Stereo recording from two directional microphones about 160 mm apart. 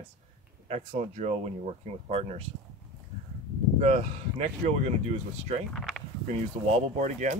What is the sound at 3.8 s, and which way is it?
Speech, 45° right (ahead or behind).